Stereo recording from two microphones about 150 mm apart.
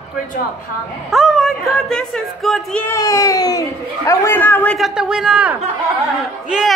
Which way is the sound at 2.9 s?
20° left (ahead or behind).